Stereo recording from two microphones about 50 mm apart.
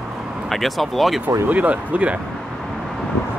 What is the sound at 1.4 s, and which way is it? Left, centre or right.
Speech, right.